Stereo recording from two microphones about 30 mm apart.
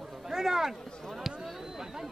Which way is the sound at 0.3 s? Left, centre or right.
Centre.